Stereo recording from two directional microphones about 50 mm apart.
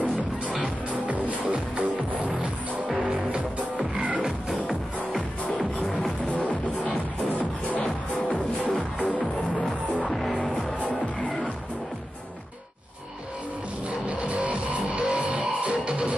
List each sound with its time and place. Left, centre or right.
0.8 s music: right
6.3 s music: left
10.0 s music: centre
10.3 s music: centre
13.8 s music: right